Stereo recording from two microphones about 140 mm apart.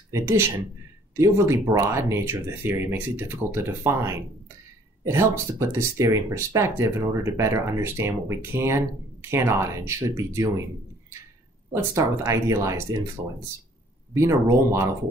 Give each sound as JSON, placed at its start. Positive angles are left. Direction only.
{"t": 0.1, "sound": "speech", "side_deg": -20}
{"t": 11.7, "sound": "speech", "side_deg": -20}
{"t": 14.1, "sound": "speech", "side_deg": -20}